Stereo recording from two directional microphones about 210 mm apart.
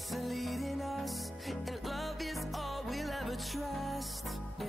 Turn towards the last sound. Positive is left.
turn(degrees=0)  # may be behind; listen again after turning